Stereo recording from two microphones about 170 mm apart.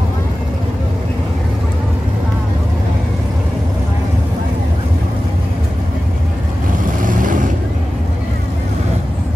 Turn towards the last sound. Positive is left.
turn(degrees=-50)  # may be behind; listen again after turning